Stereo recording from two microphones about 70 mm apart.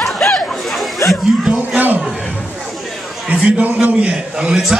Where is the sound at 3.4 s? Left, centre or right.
Centre.